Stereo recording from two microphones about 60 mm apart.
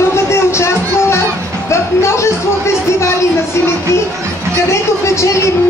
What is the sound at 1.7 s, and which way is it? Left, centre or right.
Speech, left.